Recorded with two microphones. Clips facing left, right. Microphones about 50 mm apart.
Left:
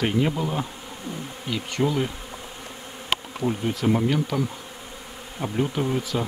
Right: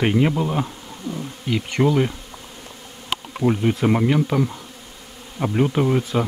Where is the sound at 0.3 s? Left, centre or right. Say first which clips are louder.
Right 4 dB; centre.